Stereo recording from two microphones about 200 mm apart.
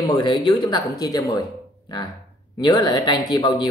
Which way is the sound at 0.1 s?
20° left (ahead or behind).